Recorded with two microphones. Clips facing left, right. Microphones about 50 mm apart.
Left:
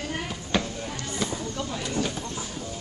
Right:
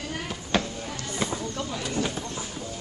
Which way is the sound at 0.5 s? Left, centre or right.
Centre.